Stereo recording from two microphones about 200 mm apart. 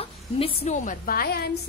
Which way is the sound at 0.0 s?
30° left (ahead or behind).